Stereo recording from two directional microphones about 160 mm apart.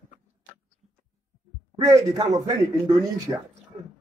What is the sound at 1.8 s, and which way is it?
Speech, 20° right (ahead or behind).